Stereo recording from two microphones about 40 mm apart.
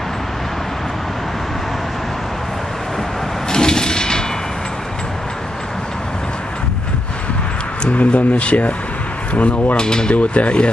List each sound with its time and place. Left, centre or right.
3.4 s a sound: centre
7.9 s speech: left
9.8 s speech: centre
10.1 s speech: left